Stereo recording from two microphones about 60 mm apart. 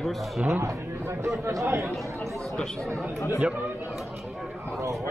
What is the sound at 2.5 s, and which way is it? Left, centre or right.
Speech, centre.